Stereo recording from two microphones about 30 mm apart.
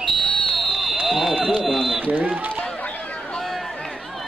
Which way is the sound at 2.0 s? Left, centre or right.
Right.